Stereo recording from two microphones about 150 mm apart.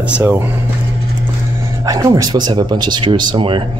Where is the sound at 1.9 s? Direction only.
25° right (ahead or behind).